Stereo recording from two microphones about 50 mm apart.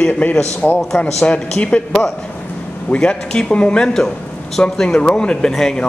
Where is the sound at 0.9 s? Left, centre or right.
Centre.